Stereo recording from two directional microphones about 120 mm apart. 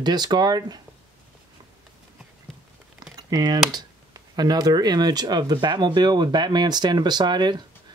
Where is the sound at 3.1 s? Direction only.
35° right (ahead or behind).